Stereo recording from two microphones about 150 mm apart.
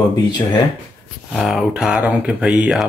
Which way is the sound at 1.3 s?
Centre (ahead or behind).